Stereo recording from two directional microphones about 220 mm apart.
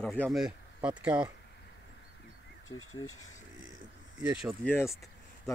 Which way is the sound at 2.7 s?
70° left (ahead or behind).